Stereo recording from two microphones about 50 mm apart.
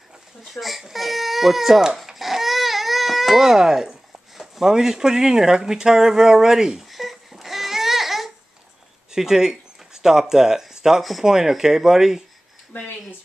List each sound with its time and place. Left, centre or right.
0.4 s speech: centre
2.0 s baby cry: centre
4.6 s a sound: centre
9.1 s speech: centre
12.7 s speech: left